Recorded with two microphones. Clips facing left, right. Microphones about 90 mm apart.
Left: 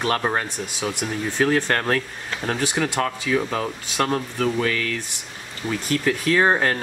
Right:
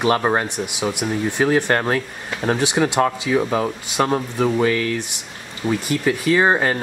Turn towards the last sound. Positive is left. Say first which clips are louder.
# right 2 dB
turn(degrees=-5)  # may be behind; listen again after turning